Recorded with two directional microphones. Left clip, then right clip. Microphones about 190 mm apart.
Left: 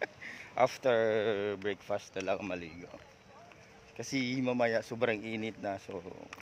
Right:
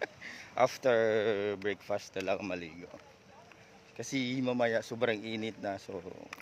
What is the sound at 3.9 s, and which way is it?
Speech, centre (ahead or behind).